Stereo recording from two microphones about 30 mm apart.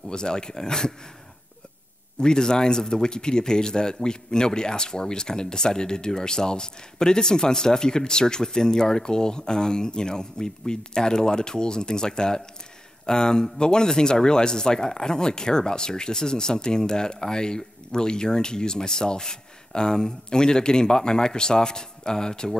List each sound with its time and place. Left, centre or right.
0.1 s a man's voice: left
2.1 s a man's voice: left